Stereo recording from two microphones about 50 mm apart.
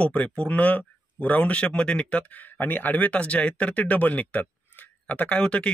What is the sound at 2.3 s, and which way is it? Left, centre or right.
Speech, left.